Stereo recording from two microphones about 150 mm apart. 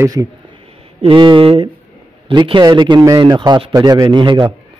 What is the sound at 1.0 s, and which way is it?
A man's voice, 35° right (ahead or behind).